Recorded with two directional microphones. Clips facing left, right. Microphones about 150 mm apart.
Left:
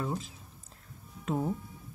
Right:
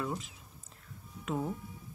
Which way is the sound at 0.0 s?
30° left (ahead or behind).